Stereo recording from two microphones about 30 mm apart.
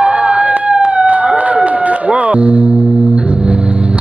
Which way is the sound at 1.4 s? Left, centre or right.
Right.